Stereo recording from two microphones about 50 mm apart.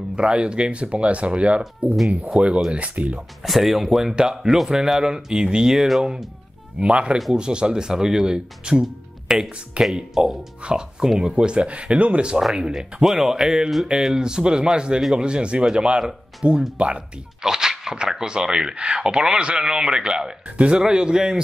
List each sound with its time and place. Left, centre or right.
0.1 s speech: centre
3.4 s speech: centre
6.8 s speech: right
12.5 s speech: centre
16.0 s speech: centre
16.7 s speech: right
17.4 s speech: centre